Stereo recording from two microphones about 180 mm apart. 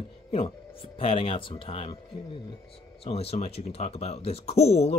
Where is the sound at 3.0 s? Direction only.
35° left (ahead or behind).